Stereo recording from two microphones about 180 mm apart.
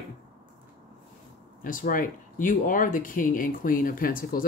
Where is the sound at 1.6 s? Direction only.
50° left (ahead or behind).